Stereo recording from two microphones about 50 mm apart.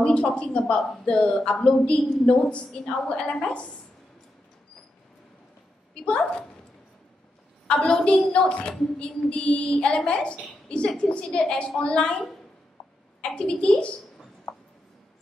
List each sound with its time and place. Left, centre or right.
0.0 s a woman's voice: centre
6.0 s a woman's voice: left
7.6 s a woman's voice: centre
12.8 s a sound: centre
13.2 s a woman's voice: centre